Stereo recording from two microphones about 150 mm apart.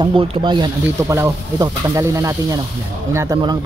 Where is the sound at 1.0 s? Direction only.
20° right (ahead or behind).